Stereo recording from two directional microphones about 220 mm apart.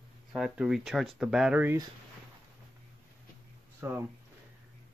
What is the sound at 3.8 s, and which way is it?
Speech, 10° right (ahead or behind).